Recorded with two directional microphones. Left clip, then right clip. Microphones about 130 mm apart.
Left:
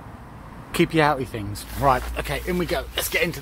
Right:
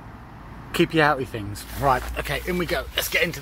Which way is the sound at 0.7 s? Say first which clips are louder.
Even; 5° left (ahead or behind).